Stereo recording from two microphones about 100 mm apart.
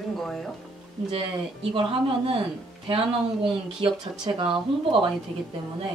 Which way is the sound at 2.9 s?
65° right (ahead or behind).